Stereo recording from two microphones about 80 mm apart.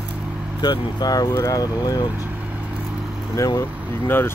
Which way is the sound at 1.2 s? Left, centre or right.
Left.